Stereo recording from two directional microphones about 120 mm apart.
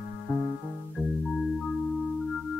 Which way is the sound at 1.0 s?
20° left (ahead or behind).